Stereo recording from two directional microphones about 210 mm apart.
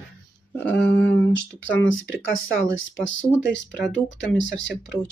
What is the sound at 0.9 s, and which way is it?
Speech, 60° left (ahead or behind).